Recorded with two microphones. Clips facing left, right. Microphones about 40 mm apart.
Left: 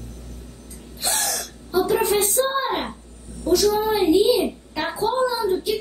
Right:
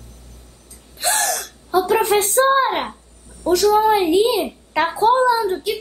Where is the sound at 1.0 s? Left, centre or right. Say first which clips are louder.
Right 6 dB; right.